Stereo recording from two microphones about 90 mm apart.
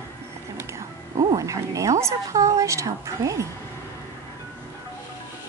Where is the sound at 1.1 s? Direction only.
60° right (ahead or behind).